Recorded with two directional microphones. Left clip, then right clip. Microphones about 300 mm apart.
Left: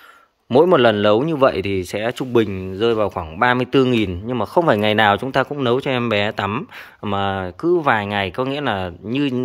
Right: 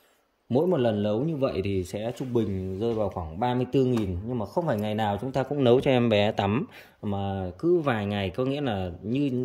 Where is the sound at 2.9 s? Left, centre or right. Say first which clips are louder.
Left 9 dB; left.